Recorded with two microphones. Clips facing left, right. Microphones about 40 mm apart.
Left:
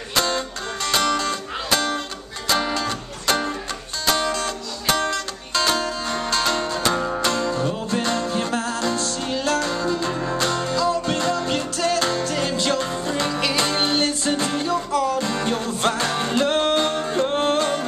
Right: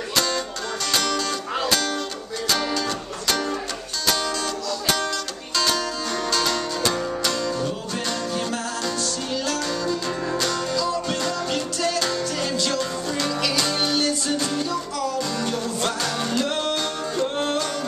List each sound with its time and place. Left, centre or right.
0.1 s music: left
4.0 s music: left